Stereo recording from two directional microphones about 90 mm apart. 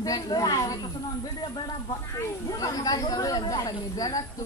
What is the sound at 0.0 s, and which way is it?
Speech, 45° left (ahead or behind).